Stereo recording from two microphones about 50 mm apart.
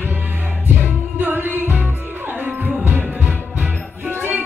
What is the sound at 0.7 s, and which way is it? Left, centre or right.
Music, right.